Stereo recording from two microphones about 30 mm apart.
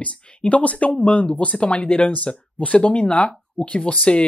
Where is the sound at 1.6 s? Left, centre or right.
Left.